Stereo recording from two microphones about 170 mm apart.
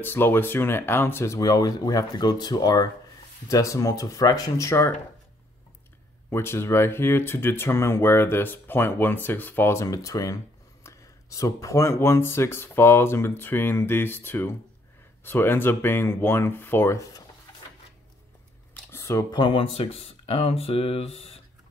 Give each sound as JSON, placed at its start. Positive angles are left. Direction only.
{"t": 0.0, "sound": "speech", "side_deg": 10}
{"t": 6.3, "sound": "speech", "side_deg": 15}
{"t": 18.9, "sound": "speech", "side_deg": 15}
{"t": 19.4, "sound": "speech", "side_deg": 35}